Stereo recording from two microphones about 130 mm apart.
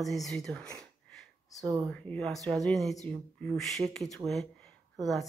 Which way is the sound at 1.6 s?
30° right (ahead or behind).